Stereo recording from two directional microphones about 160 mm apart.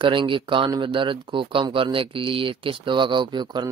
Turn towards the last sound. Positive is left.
turn(degrees=-30)  # may be behind; listen again after turning